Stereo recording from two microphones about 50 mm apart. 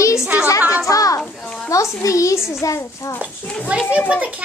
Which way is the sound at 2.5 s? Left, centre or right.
Left.